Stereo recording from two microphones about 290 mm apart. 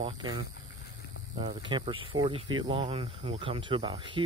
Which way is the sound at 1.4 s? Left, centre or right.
Centre.